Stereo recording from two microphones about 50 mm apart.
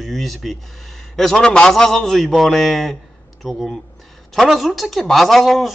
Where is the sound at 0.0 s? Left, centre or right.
Centre.